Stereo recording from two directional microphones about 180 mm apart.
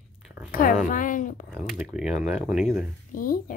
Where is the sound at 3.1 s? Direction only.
50° left (ahead or behind).